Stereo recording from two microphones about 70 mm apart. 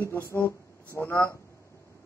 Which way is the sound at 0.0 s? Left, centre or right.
Left.